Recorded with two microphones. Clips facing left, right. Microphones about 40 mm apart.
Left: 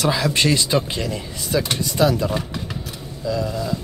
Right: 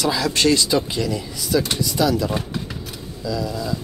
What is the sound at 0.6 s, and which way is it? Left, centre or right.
Speech, left.